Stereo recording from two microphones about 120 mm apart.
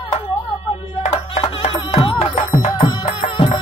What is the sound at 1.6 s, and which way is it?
Music, 55° left (ahead or behind).